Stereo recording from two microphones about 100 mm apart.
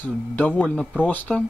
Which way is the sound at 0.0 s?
15° left (ahead or behind).